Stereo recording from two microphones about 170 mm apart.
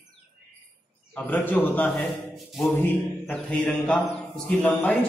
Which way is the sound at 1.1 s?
10° left (ahead or behind).